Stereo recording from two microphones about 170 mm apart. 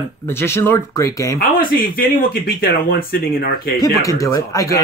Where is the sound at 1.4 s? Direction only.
60° left (ahead or behind).